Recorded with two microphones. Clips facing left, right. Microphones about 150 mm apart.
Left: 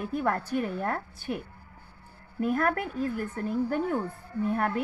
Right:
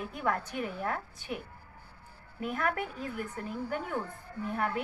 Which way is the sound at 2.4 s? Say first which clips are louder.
Left 6 dB; 45° left (ahead or behind).